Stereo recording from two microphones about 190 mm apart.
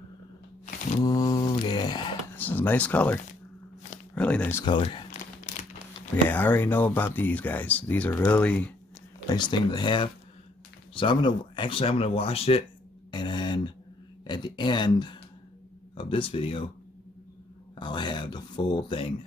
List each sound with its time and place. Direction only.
1.0 s mantra: 20° left (ahead or behind)
2.3 s speech: 10° left (ahead or behind)
4.6 s speech: 25° left (ahead or behind)
5.1 s crumpling: 40° left (ahead or behind)
6.2 s speech: 10° left (ahead or behind)
9.3 s speech: 20° left (ahead or behind)
13.1 s a sound: 25° left (ahead or behind)
14.2 s speech: 25° left (ahead or behind)
17.7 s speech: 25° left (ahead or behind)